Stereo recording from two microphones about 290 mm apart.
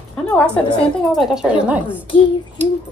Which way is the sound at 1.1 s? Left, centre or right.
Centre.